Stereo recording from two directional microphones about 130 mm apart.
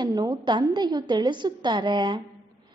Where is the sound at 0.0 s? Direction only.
30° right (ahead or behind).